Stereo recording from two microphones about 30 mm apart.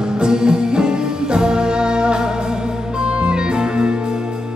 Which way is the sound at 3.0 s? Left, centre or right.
Right.